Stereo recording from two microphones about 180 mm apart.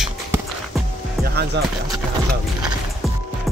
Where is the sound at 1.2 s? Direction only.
65° right (ahead or behind).